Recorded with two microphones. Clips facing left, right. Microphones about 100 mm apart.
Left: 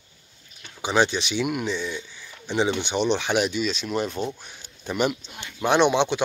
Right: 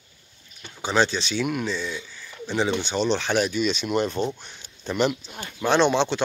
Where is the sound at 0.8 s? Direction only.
15° left (ahead or behind).